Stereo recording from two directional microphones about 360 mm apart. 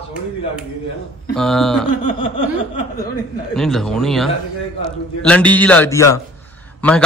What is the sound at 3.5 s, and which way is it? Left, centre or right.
A man's voice, centre.